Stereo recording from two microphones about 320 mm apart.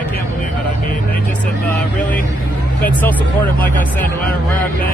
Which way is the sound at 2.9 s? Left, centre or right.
Centre.